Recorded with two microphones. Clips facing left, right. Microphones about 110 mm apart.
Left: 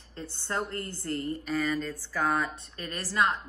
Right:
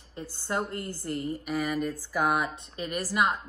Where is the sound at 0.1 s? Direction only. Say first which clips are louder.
Right 2 dB; 15° right (ahead or behind).